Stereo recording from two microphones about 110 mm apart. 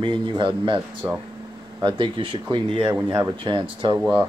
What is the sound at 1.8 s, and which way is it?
Speech, 45° right (ahead or behind).